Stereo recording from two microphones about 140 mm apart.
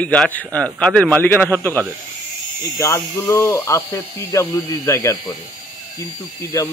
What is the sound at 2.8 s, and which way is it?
Speech, 20° left (ahead or behind).